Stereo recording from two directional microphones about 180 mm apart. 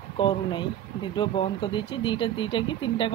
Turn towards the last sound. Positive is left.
turn(degrees=25)  # may be behind; listen again after turning